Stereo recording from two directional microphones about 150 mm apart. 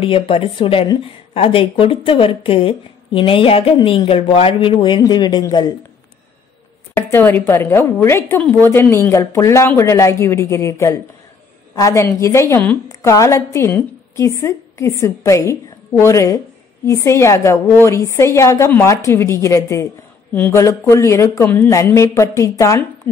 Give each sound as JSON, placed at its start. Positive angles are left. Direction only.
{"t": 0.0, "sound": "speech", "side_deg": 35}
{"t": 6.9, "sound": "a woman's voice", "side_deg": 15}